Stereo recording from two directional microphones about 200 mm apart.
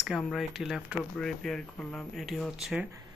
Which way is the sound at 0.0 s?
Centre (ahead or behind).